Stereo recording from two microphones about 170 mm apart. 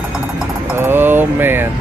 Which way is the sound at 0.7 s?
10° right (ahead or behind).